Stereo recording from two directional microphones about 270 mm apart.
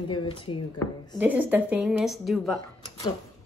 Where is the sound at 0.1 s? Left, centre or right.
Centre.